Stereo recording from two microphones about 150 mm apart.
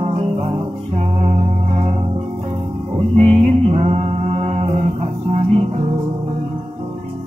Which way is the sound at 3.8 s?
40° right (ahead or behind).